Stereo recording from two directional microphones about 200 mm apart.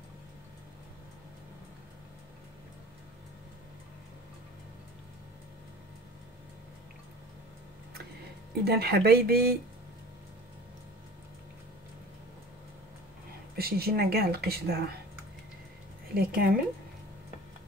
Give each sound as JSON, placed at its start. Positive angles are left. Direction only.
{"t": 8.6, "sound": "speech", "side_deg": -55}
{"t": 13.6, "sound": "speech", "side_deg": -50}
{"t": 16.2, "sound": "speech", "side_deg": -45}